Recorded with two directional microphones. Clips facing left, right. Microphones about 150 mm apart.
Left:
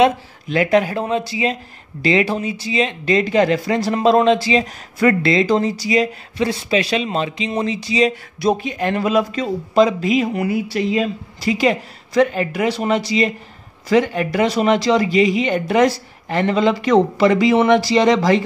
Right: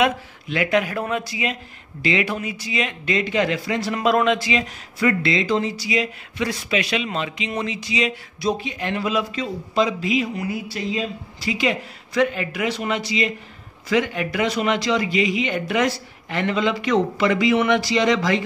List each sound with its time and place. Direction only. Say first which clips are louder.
0.0 s speech: left 6 dB; 35° left (ahead or behind)
4.9 s speech: left 5 dB; 45° left (ahead or behind)
8.4 s speech: left 5 dB; 50° left (ahead or behind); by 18.4 s 35° left (ahead or behind)